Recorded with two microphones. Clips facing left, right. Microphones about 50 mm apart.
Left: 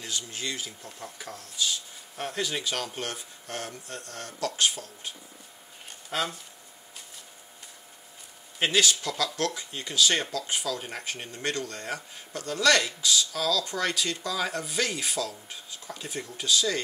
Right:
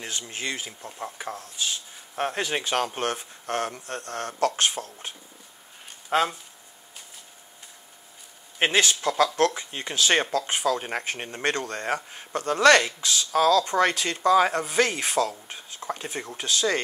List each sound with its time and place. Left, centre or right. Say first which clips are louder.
0.0 s speech: right 2 dB; right
6.0 s speech: right 7 dB; right
8.5 s speech: right 2 dB; right